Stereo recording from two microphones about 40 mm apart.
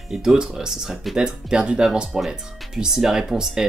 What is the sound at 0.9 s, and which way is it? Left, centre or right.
Speech, centre.